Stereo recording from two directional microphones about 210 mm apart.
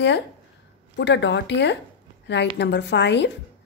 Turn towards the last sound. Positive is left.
turn(degrees=55)  # may be behind; listen again after turning